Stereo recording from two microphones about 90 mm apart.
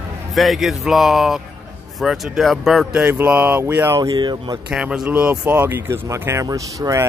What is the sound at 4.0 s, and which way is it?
Speech, 50° right (ahead or behind).